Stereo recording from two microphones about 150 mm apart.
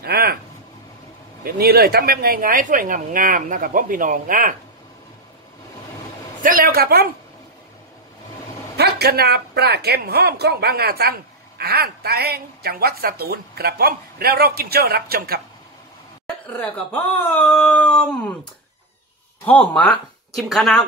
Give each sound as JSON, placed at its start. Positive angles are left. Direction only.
{"t": 0.0, "sound": "a sound", "side_deg": -90}
{"t": 1.4, "sound": "a woman's voice", "side_deg": -90}
{"t": 6.4, "sound": "a man's voice", "side_deg": -70}
{"t": 8.7, "sound": "speech", "side_deg": -90}
{"t": 16.7, "sound": "speech", "side_deg": 10}
{"t": 19.4, "sound": "speech", "side_deg": 10}